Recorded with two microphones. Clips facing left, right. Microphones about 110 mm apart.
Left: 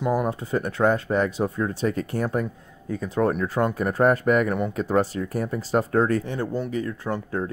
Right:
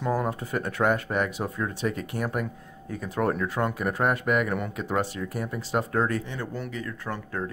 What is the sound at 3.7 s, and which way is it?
Speech, 35° left (ahead or behind).